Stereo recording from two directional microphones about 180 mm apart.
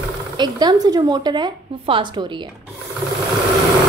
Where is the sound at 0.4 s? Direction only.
20° right (ahead or behind).